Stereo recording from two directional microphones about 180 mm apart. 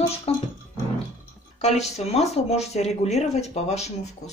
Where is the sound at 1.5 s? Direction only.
40° left (ahead or behind).